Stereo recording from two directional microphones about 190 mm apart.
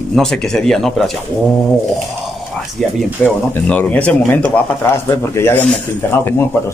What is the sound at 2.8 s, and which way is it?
Speech, centre (ahead or behind).